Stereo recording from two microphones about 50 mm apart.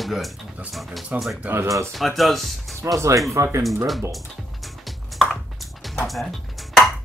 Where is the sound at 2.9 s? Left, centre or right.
Right.